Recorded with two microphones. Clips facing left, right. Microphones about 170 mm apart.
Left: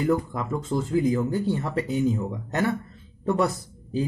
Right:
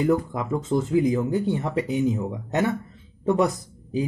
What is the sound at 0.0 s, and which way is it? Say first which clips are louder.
Speech: right 2 dB; 20° right (ahead or behind).